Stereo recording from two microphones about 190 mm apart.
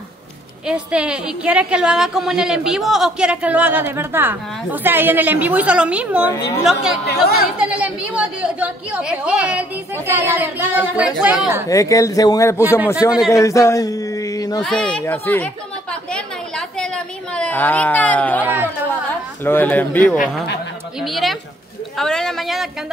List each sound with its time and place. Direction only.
0.7 s a woman's voice: 5° right (ahead or behind)
7.1 s speech: 55° left (ahead or behind)
7.5 s a woman's voice: 5° right (ahead or behind)
11.7 s speech: 15° left (ahead or behind)
14.6 s a sound: 5° left (ahead or behind)
18.4 s a woman's voice: 10° right (ahead or behind)
19.4 s speech: 10° left (ahead or behind)
21.9 s a sound: centre (ahead or behind)